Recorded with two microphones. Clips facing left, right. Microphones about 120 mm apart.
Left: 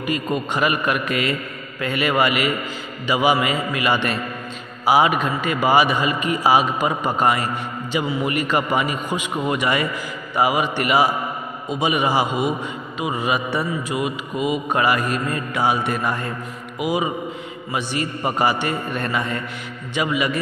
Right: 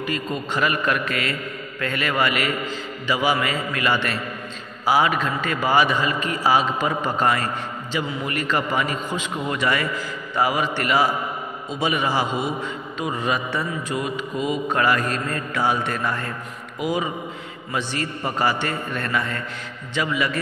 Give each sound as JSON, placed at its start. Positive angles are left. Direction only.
{"t": 0.0, "sound": "a man's voice", "side_deg": 15}